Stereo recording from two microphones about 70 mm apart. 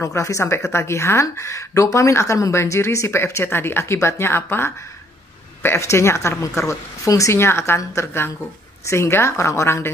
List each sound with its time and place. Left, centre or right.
0.0 s a woman's voice: left
7.3 s a woman's voice: left